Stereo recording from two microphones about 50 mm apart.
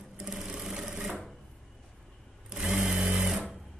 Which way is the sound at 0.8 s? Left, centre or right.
Centre.